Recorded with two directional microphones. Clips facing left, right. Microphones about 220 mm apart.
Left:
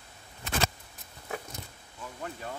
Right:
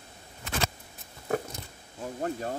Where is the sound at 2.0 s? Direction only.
40° right (ahead or behind).